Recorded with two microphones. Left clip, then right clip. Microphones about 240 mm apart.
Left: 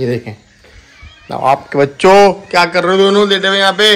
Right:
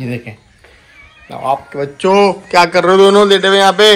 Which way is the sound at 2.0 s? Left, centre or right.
Centre.